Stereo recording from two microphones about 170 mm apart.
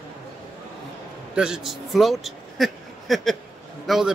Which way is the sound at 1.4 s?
5° right (ahead or behind).